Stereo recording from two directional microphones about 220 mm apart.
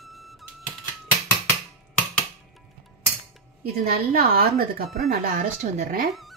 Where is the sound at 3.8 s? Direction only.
40° right (ahead or behind).